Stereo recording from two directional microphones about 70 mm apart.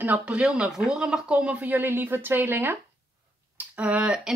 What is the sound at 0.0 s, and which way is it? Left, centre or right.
Speech, right.